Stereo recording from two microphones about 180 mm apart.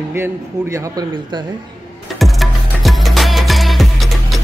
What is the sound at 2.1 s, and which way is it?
Music, centre (ahead or behind).